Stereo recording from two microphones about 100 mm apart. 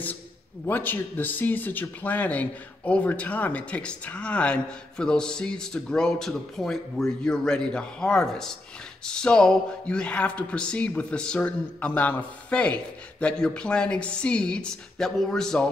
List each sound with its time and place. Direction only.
0.7 s speech: 20° left (ahead or behind)